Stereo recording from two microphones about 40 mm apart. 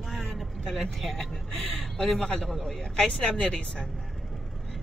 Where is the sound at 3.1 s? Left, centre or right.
Left.